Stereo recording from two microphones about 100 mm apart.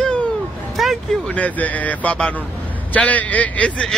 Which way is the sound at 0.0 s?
10° left (ahead or behind).